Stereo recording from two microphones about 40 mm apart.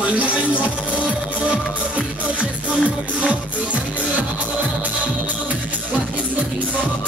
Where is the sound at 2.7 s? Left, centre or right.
Right.